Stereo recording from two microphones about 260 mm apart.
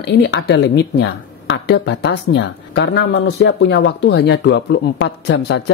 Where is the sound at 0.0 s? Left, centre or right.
Left.